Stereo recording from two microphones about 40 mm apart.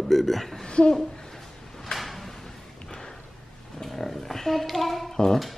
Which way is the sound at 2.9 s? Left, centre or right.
Centre.